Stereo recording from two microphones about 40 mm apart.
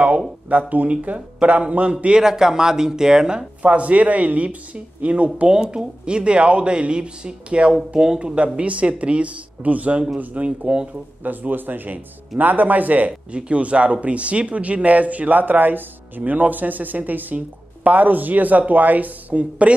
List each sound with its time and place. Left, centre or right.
0.5 s speech: right
2.2 s speech: centre
3.6 s speech: right
11.2 s speech: right
13.3 s speech: right